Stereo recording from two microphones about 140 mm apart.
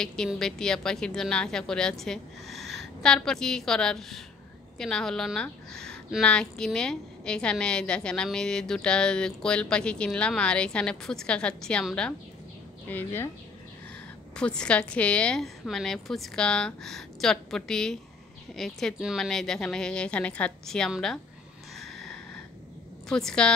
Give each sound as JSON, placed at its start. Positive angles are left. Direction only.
{"t": 0.0, "sound": "a woman's voice", "side_deg": 5}
{"t": 12.9, "sound": "speech", "side_deg": 15}
{"t": 14.3, "sound": "a woman's voice", "side_deg": 5}
{"t": 21.7, "sound": "a sound", "side_deg": 0}
{"t": 23.0, "sound": "a woman's voice", "side_deg": 5}